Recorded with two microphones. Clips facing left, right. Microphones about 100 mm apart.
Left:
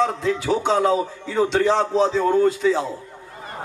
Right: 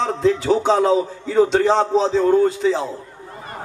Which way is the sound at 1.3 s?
40° right (ahead or behind).